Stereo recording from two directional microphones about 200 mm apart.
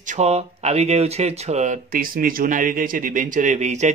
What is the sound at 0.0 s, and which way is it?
Speech, 35° right (ahead or behind).